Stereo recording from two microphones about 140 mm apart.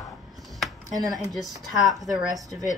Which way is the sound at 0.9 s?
25° right (ahead or behind).